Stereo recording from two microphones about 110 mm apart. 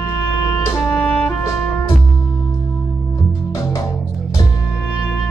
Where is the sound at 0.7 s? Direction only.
20° left (ahead or behind).